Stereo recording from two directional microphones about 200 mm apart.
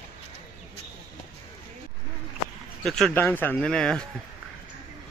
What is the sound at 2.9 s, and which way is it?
Speech, centre (ahead or behind).